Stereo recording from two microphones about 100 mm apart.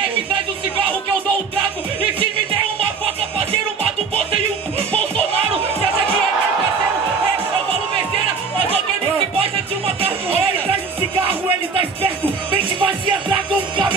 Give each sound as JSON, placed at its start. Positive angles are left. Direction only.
{"t": 12.4, "sound": "music", "side_deg": -55}